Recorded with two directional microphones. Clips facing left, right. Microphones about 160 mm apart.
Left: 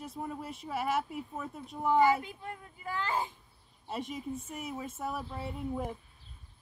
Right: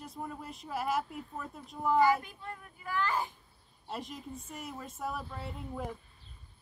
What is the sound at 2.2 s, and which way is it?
A child's voice, 20° left (ahead or behind).